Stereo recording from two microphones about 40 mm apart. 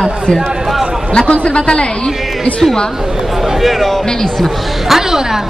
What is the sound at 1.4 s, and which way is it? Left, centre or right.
Speech, left.